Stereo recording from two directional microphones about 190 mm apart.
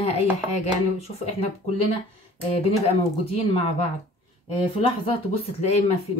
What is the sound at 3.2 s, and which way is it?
Speech, 30° left (ahead or behind).